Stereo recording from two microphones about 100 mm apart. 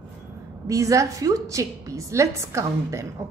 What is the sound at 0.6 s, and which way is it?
A woman's voice, 30° right (ahead or behind).